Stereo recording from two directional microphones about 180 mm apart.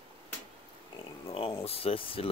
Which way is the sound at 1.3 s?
30° left (ahead or behind).